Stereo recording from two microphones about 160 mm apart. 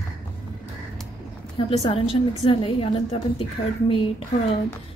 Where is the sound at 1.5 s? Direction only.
40° left (ahead or behind).